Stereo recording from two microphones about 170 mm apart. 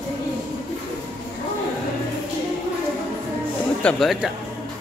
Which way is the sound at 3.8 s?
Centre (ahead or behind).